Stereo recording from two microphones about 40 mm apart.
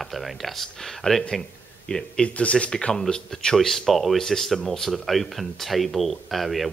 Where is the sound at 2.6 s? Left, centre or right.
Centre.